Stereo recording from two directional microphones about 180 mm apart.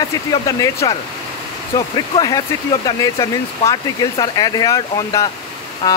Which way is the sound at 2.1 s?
20° left (ahead or behind).